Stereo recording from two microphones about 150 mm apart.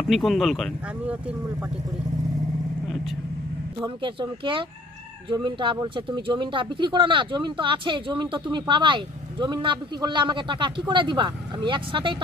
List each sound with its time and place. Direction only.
0.1 s speech: centre (ahead or behind)
1.0 s speech: 10° right (ahead or behind)
3.8 s speech: 35° right (ahead or behind)